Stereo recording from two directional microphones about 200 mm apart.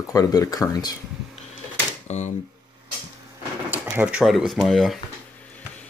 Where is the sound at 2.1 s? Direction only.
35° left (ahead or behind).